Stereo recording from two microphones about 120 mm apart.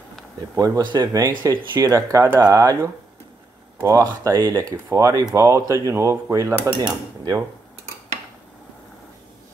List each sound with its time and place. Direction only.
0.6 s speech: 25° right (ahead or behind)